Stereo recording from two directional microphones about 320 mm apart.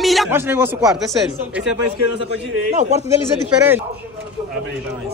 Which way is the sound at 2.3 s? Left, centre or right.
Right.